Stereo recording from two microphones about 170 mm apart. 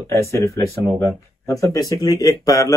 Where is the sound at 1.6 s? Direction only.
20° left (ahead or behind).